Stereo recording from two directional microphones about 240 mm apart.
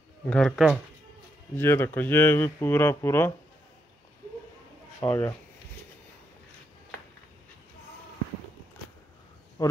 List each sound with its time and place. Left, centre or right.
0.3 s speech: centre
5.0 s speech: centre
9.6 s speech: centre